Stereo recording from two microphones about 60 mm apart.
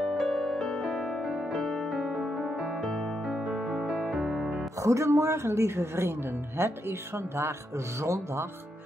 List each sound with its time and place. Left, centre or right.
0.0 s music: centre
4.8 s a woman's voice: right